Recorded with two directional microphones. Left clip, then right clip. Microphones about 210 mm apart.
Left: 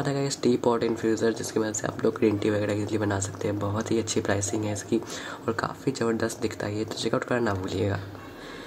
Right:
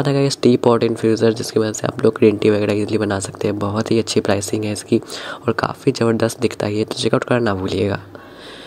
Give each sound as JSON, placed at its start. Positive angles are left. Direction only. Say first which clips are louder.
{"t": 0.0, "sound": "speech", "louder": "right 10 dB", "side_deg": -30}